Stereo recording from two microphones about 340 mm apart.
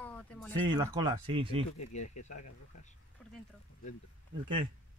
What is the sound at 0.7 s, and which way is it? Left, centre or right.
Speech, centre.